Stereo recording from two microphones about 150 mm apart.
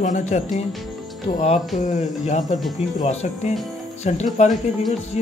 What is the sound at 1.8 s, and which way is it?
Speech, 55° left (ahead or behind).